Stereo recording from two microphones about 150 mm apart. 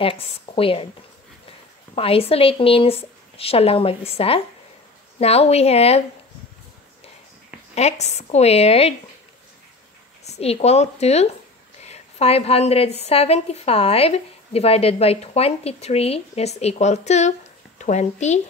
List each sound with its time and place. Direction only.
0.0 s speech: 40° left (ahead or behind)
2.0 s a woman's voice: 40° left (ahead or behind)
7.7 s a woman's voice: 45° left (ahead or behind)
10.2 s a woman's voice: 45° left (ahead or behind)